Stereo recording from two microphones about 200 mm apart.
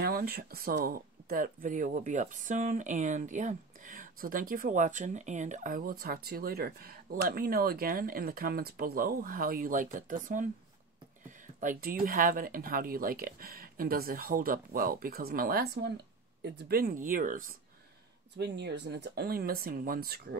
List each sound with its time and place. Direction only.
0.0 s speech: 50° right (ahead or behind)
11.6 s speech: 45° right (ahead or behind)
18.4 s speech: 55° right (ahead or behind)